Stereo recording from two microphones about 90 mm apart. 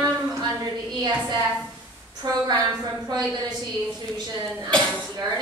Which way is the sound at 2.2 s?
50° right (ahead or behind).